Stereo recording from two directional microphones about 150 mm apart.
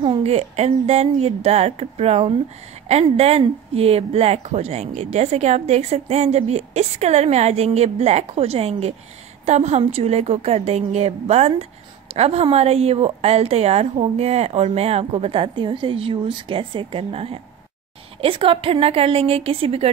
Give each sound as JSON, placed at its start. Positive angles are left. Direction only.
{"t": 0.0, "sound": "a woman's voice", "side_deg": -40}